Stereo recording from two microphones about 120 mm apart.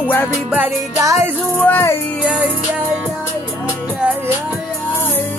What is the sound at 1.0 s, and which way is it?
Music, 30° right (ahead or behind).